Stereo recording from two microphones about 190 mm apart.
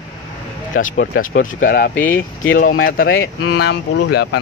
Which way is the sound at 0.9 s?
55° left (ahead or behind).